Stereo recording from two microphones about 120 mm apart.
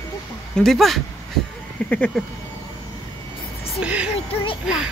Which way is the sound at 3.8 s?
10° right (ahead or behind).